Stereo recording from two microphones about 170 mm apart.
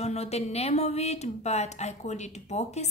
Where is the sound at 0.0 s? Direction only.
40° left (ahead or behind).